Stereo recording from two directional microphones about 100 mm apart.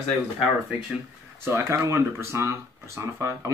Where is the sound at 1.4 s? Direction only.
25° right (ahead or behind).